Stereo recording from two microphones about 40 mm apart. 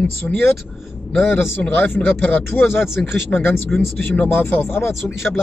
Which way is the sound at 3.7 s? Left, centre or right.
Left.